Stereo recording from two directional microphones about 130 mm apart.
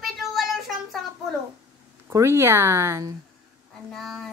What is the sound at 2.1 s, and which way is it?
Speech, 20° right (ahead or behind).